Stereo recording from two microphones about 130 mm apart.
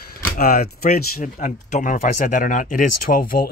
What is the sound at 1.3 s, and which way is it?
Speech, 80° left.